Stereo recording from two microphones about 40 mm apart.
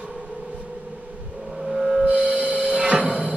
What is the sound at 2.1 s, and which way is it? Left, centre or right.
Music, right.